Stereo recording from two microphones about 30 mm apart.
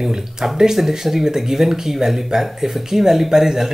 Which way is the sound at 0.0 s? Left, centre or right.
Centre.